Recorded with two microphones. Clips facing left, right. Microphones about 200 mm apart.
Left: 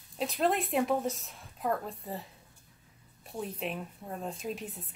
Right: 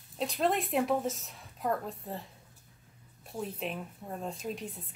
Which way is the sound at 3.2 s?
Centre (ahead or behind).